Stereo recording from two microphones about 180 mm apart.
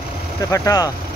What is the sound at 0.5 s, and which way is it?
Speech, 20° left (ahead or behind).